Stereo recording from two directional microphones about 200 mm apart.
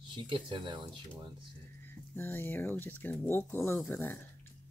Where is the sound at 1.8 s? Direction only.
10° left (ahead or behind).